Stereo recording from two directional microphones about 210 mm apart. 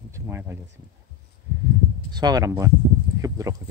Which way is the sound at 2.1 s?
20° right (ahead or behind).